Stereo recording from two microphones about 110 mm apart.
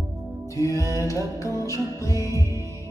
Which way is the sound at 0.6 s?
30° left (ahead or behind).